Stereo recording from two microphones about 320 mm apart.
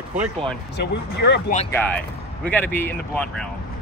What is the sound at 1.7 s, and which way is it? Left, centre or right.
Speech, centre.